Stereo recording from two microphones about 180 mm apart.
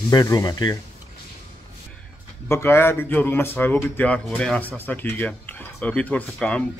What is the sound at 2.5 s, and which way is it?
A man's voice, 15° left (ahead or behind).